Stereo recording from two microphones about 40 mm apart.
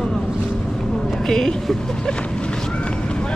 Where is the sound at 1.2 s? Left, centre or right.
Centre.